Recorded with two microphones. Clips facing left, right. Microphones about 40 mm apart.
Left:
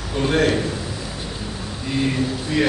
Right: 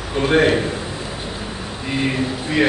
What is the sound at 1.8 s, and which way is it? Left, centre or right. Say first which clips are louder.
Speech: right 1 dB; right.